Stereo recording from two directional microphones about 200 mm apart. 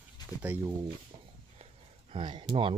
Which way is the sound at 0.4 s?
10° right (ahead or behind).